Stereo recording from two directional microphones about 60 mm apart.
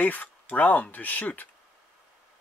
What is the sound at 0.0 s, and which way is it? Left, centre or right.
Speech, left.